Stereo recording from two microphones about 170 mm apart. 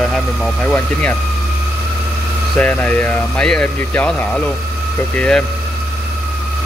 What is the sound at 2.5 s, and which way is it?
Speech, 10° left (ahead or behind).